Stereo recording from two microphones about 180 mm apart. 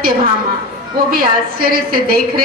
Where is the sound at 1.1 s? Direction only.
55° right (ahead or behind).